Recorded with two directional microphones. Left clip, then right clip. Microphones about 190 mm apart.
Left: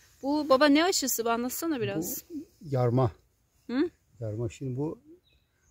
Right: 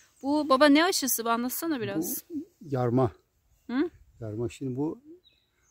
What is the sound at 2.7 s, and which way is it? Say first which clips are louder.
Speech: right 1 dB; 35° right (ahead or behind).